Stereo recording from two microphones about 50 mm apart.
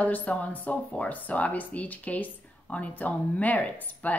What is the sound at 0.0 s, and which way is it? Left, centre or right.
Speech, left.